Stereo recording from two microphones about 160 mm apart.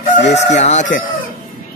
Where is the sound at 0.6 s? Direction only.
50° left (ahead or behind).